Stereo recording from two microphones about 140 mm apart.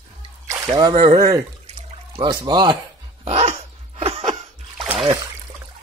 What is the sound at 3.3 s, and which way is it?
Dog, 50° right (ahead or behind).